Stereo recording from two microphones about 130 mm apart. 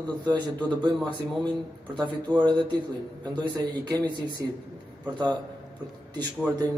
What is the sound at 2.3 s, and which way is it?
Speech, 35° right (ahead or behind).